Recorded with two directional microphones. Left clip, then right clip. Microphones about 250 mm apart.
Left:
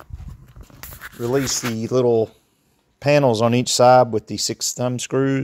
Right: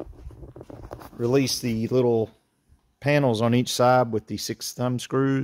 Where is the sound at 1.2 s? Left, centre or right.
Centre.